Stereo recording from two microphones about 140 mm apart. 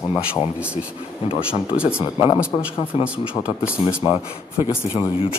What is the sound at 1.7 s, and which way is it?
Speech, 10° right (ahead or behind).